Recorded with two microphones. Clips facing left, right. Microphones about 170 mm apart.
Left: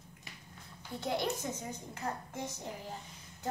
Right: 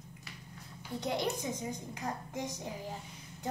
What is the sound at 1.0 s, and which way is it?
A woman's voice, 15° right (ahead or behind).